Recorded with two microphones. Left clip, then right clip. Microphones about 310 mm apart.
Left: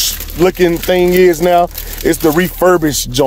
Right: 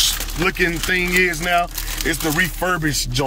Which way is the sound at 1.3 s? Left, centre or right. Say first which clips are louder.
Left 9 dB; left.